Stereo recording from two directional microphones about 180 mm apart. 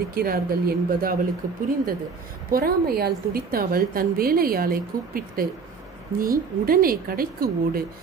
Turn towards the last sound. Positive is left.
turn(degrees=-55)  # may be behind; listen again after turning